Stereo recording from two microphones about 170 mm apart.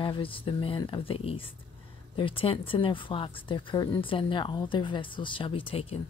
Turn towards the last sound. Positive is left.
turn(degrees=35)  # may be behind; listen again after turning